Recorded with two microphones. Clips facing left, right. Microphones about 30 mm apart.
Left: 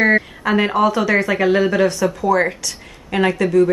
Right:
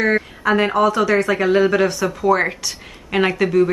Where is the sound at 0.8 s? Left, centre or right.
Centre.